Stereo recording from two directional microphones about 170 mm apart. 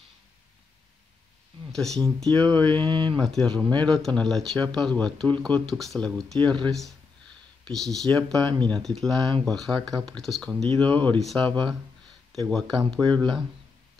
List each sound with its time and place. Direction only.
1.7 s speech: centre (ahead or behind)
2.3 s mantra: 10° left (ahead or behind)
2.7 s speech: 30° right (ahead or behind)
3.2 s speech: 5° left (ahead or behind)
8.1 s mantra: 5° left (ahead or behind)
8.6 s speech: 5° left (ahead or behind)